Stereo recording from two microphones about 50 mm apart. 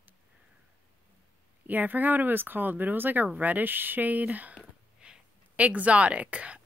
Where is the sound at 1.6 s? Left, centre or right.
Right.